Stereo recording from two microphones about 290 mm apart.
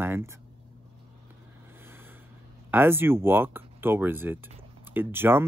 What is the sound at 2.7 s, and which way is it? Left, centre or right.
Speech, centre.